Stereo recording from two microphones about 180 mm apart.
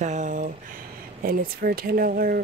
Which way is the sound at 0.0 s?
40° right (ahead or behind).